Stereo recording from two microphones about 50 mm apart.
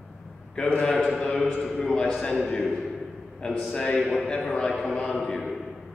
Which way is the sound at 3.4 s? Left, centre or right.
Centre.